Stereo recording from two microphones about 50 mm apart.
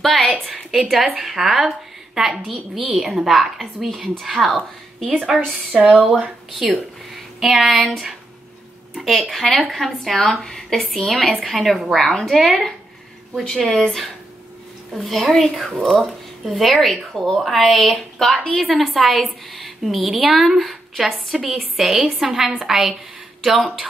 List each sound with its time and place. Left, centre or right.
0.0 s a sound: centre
0.5 s a woman's voice: centre
5.3 s a woman's voice: centre
5.7 s speech: right
6.6 s a woman's voice: centre